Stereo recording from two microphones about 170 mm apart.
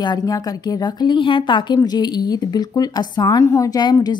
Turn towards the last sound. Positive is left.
turn(degrees=25)  # may be behind; listen again after turning